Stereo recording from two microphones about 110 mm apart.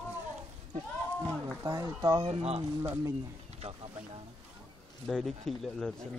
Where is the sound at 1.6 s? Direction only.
35° right (ahead or behind).